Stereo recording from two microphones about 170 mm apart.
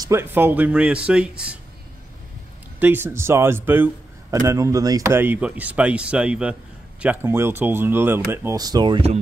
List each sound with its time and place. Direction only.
0.0 s speech: 15° right (ahead or behind)
2.8 s speech: 10° right (ahead or behind); by 9.1 s 30° right (ahead or behind)